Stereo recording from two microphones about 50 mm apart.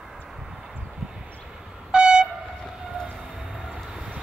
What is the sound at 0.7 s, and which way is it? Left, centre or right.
Train, centre.